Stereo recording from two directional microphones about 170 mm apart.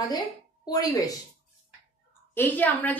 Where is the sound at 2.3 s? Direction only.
10° left (ahead or behind).